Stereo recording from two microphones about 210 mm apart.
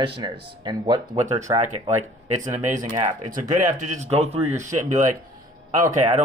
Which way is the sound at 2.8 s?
40° right (ahead or behind).